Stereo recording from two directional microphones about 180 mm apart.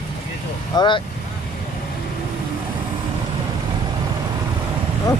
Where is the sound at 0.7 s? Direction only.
25° left (ahead or behind).